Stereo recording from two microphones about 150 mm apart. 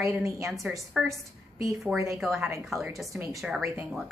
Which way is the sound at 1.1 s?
20° right (ahead or behind).